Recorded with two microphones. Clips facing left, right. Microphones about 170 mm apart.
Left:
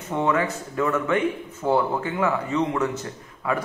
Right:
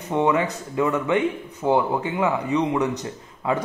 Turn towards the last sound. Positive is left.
turn(degrees=-25)  # may be behind; listen again after turning